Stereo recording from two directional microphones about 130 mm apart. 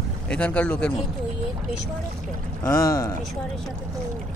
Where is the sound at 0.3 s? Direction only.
10° left (ahead or behind).